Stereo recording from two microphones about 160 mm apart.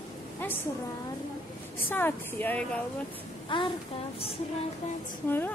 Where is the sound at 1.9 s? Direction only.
10° left (ahead or behind).